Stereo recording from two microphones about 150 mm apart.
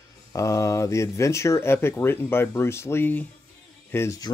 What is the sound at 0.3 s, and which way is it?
Speech, 20° left (ahead or behind).